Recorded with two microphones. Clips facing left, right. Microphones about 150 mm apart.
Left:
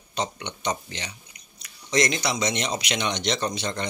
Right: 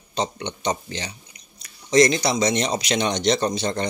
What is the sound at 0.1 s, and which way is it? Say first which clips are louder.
Speech: right 4 dB; 30° right (ahead or behind).